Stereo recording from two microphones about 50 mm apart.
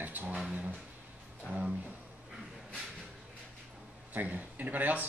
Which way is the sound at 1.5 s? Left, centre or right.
Right.